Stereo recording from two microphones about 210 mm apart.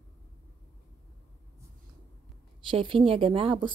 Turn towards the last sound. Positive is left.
turn(degrees=-25)  # may be behind; listen again after turning